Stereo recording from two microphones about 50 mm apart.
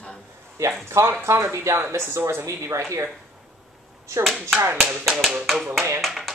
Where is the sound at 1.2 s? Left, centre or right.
Right.